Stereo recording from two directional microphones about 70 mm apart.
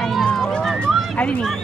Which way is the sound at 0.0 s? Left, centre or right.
Centre.